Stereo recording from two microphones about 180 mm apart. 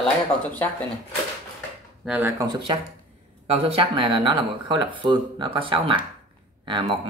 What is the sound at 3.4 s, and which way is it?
Speech, 30° right (ahead or behind).